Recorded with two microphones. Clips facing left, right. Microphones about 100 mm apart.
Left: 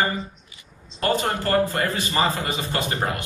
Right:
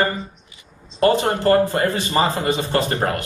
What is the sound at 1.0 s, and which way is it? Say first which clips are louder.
A man's voice: right 6 dB; 30° right (ahead or behind).